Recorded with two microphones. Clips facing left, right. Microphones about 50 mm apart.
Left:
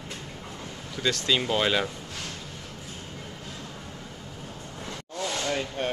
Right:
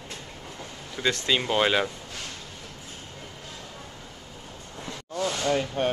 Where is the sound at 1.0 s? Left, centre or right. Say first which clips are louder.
Right 1 dB; right.